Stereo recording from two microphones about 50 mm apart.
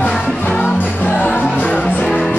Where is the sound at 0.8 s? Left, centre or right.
Left.